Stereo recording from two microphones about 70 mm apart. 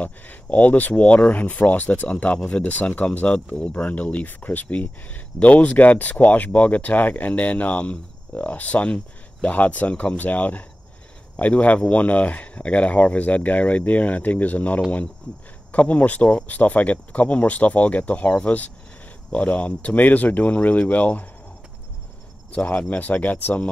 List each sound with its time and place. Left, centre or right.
0.0 s speech: left
22.5 s speech: left